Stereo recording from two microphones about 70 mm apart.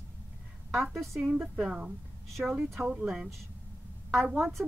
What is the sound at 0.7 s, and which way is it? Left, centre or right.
A woman's voice, centre.